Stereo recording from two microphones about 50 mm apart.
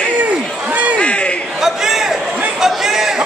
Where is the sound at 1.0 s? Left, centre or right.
Left.